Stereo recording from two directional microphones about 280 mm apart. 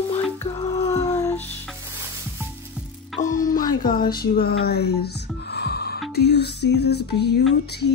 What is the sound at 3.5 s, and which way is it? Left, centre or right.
Music, left.